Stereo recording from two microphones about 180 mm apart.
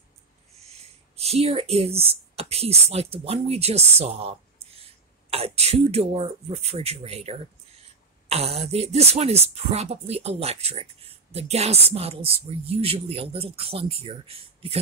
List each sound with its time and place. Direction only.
0.6 s speech: 35° right (ahead or behind)